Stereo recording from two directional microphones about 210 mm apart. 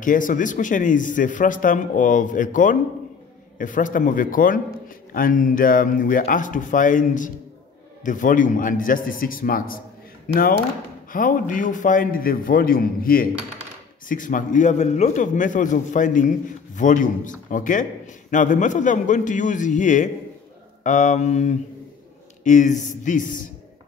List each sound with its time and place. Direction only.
0.0 s a man's voice: 40° left (ahead or behind)